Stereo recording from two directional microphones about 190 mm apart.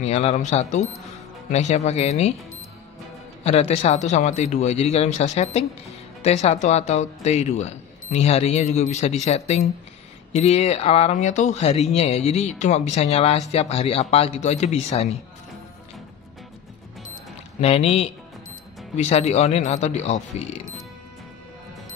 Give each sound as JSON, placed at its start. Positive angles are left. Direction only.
{"t": 0.0, "sound": "speech", "side_deg": 35}
{"t": 17.6, "sound": "speech", "side_deg": 35}